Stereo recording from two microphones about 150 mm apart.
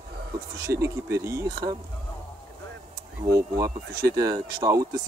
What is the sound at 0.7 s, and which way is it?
Speech, 20° right (ahead or behind).